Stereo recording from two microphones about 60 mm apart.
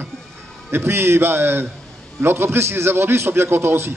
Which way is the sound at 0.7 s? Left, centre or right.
Right.